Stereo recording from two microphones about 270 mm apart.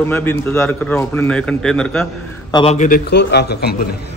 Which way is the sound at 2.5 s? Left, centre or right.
Left.